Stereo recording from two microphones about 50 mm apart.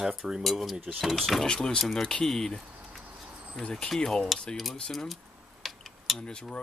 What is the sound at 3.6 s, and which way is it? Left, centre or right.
Speech, centre.